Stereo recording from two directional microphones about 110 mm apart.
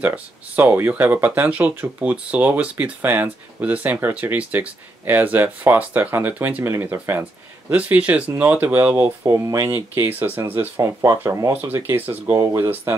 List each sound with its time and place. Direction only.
0.0 s speech: 15° right (ahead or behind)
11.5 s speech: 20° right (ahead or behind)